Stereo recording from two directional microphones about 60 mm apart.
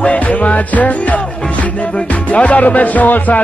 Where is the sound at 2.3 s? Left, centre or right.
Left.